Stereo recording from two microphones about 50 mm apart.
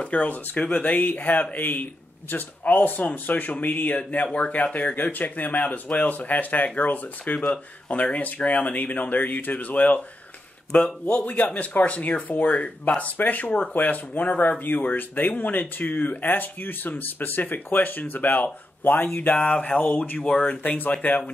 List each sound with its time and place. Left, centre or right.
0.0 s speech: left
19.3 s speech: left
20.2 s speech: centre
20.4 s speech: left